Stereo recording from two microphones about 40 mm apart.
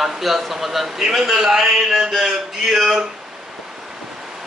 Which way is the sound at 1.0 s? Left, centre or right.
Centre.